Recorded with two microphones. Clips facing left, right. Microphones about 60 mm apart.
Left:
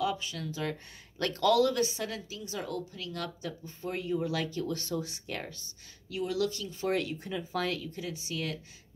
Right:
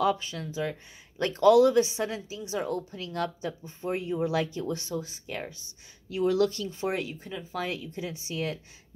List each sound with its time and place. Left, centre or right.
0.0 s speech: right
0.5 s speech: centre; by 3.5 s right
3.6 s speech: right
6.0 s speech: right
6.8 s speech: centre
7.1 s speech: centre
8.0 s speech: right